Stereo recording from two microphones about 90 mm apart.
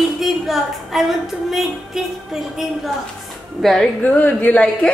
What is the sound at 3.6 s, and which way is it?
Music, 5° left (ahead or behind).